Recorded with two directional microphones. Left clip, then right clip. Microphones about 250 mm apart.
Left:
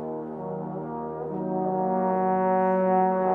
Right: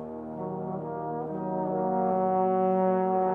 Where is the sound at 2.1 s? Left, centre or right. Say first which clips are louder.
Left 2 dB; left.